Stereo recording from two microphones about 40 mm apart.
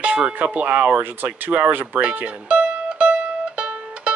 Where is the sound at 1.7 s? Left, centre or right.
Right.